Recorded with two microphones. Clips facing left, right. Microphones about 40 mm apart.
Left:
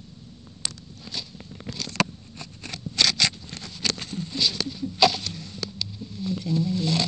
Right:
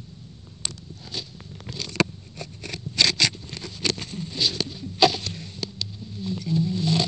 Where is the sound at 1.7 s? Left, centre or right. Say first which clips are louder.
Right 1 dB; right.